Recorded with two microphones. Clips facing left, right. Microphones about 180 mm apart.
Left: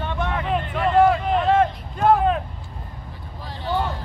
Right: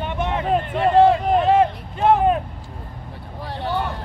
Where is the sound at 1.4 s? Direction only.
20° right (ahead or behind).